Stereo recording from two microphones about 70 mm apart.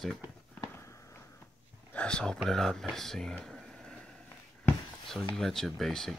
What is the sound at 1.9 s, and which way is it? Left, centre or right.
Speech, centre.